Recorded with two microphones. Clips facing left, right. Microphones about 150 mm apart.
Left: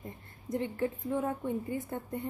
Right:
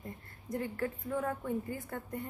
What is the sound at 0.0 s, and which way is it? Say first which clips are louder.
A woman's voice: left 2 dB; 20° left (ahead or behind).